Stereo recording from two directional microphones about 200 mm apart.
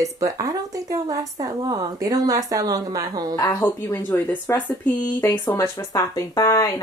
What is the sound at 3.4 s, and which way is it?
Speech, 15° left (ahead or behind).